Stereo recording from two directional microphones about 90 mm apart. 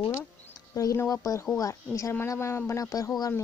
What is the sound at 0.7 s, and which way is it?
Speech, 40° left (ahead or behind).